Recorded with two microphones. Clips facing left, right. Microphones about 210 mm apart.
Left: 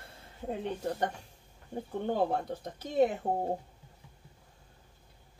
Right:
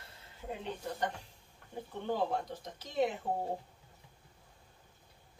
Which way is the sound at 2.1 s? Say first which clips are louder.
Left 3 dB; 50° left (ahead or behind).